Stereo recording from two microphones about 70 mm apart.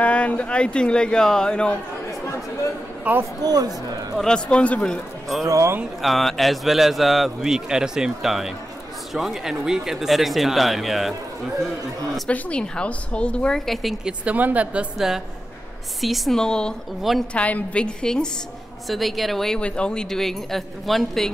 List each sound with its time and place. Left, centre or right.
0.0 s speech: centre
2.2 s chatter: left
3.1 s speech: centre
3.4 s speech: right
4.2 s speech: centre
5.5 s speech: right
6.0 s a man's voice: centre
12.3 s speech: centre
14.0 s speech: right
15.0 s a man's voice: centre
18.9 s a man's voice: centre